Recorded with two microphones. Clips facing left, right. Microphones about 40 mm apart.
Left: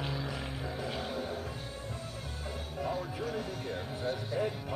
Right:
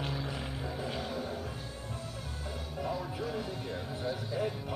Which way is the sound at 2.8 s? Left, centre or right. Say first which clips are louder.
Even; left.